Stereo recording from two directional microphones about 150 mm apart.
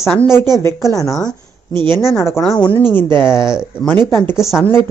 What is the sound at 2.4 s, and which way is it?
Speech, 15° left (ahead or behind).